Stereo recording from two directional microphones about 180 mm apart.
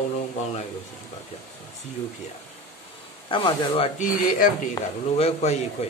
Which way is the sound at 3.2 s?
25° left (ahead or behind).